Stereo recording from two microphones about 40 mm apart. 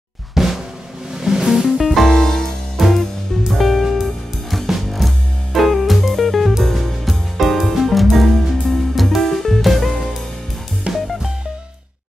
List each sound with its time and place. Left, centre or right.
0.3 s drum: centre
1.1 s music: centre
1.8 s music: centre
2.8 s music: centre
10.9 s music: right